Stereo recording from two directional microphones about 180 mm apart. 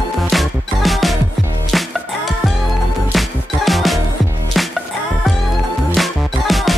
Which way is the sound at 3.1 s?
Centre (ahead or behind).